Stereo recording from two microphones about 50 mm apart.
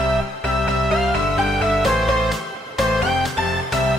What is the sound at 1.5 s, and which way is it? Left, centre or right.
Music, centre.